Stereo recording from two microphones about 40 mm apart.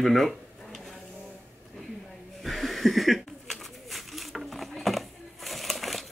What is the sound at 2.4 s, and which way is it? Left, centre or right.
Pigeon, centre.